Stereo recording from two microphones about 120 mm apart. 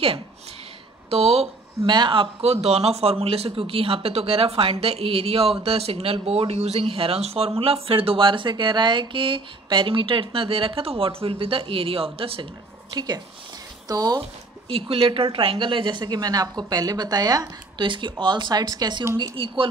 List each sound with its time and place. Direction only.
1.1 s speech: 55° right (ahead or behind)
1.9 s a woman's voice: 40° right (ahead or behind)
2.4 s speech: 60° right (ahead or behind)
12.9 s a woman's voice: 35° right (ahead or behind)
14.7 s a woman's voice: 50° right (ahead or behind)
19.3 s speech: 50° right (ahead or behind)